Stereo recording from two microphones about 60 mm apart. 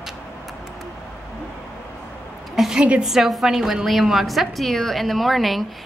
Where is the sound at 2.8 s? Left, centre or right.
Centre.